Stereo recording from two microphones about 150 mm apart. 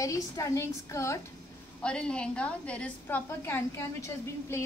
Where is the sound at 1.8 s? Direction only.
5° left (ahead or behind).